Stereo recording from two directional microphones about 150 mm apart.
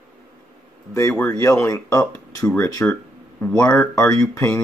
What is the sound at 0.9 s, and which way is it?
Speech, 15° left (ahead or behind).